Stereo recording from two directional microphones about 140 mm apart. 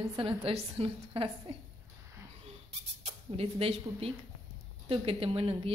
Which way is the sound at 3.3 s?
45° right (ahead or behind).